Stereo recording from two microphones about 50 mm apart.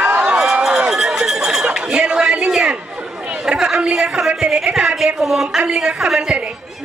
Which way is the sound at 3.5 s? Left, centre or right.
Centre.